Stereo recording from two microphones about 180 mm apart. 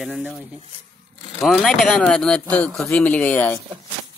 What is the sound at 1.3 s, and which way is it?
Speech, centre (ahead or behind).